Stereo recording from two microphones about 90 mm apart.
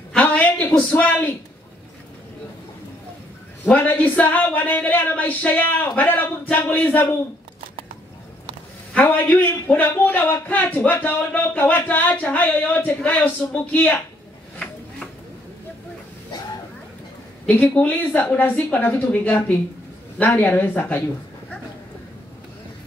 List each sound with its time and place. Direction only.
0.1 s a sound: 15° left (ahead or behind)
3.6 s a man's voice: 15° left (ahead or behind)
8.9 s a man's voice: 15° left (ahead or behind)
17.5 s a man's voice: 20° left (ahead or behind)